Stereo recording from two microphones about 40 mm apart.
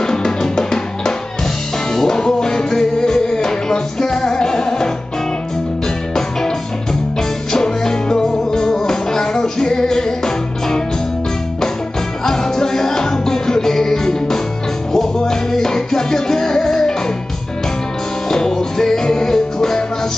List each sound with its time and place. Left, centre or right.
0.0 s music: centre
7.5 s music: centre
12.3 s music: centre
18.3 s music: centre